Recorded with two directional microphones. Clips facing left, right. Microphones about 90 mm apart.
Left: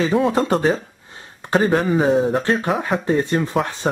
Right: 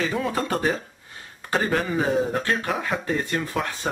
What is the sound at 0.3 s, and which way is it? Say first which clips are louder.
Speech: left 6 dB; 25° left (ahead or behind).